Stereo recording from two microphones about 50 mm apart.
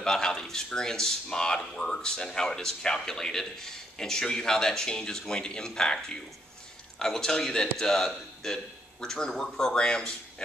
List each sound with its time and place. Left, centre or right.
0.0 s speech: centre